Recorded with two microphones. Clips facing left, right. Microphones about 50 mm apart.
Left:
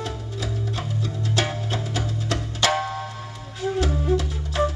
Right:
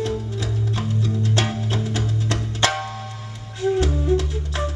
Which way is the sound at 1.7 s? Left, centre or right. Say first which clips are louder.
Right 2 dB; centre.